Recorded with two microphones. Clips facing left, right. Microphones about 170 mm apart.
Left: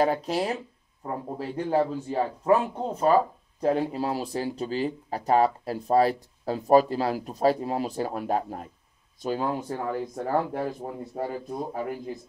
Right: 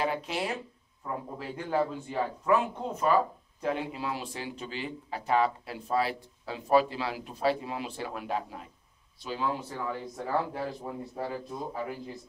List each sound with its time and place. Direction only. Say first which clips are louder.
0.0 s speech: left 6 dB; 40° left (ahead or behind)